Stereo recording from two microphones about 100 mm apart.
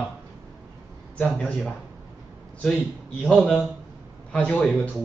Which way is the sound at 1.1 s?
15° left (ahead or behind).